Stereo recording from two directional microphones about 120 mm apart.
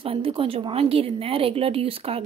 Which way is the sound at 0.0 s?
50° right (ahead or behind).